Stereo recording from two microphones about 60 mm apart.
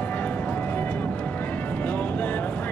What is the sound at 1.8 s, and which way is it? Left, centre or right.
Music, left.